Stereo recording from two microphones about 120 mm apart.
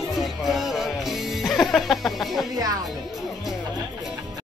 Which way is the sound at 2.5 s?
30° right (ahead or behind).